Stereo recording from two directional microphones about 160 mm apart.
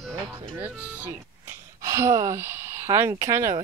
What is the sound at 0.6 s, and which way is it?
Speech, 10° right (ahead or behind).